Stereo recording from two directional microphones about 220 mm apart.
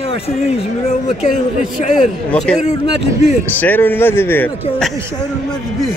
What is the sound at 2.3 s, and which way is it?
A man's voice, 5° left (ahead or behind).